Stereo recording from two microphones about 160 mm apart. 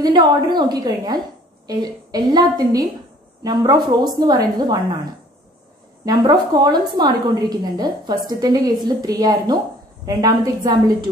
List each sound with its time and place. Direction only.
0.0 s a woman's voice: 25° right (ahead or behind)
6.0 s a woman's voice: 25° right (ahead or behind)